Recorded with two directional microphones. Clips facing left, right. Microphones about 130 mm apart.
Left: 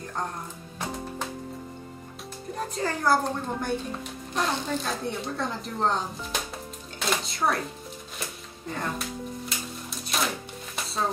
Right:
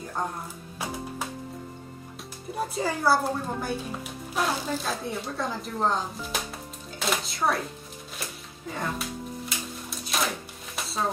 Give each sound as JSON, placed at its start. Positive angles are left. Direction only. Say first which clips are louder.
{"t": 2.5, "sound": "a woman's voice", "louder": "right 1 dB", "side_deg": -5}
{"t": 8.2, "sound": "music", "louder": "even", "side_deg": 0}